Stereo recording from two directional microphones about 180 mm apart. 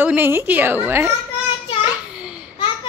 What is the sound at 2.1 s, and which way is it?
Babbling, 5° right (ahead or behind).